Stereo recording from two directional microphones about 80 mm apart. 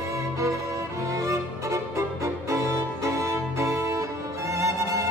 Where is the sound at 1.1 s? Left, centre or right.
Right.